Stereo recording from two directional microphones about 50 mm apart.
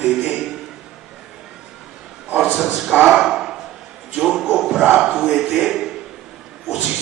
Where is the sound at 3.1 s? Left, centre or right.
Centre.